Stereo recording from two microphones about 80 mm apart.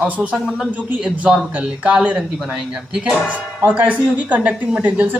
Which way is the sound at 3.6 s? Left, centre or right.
Centre.